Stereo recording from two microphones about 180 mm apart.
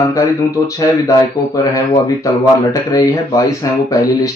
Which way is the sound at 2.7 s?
20° left (ahead or behind).